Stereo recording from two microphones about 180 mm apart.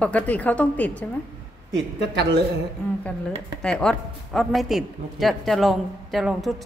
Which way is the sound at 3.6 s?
5° left (ahead or behind).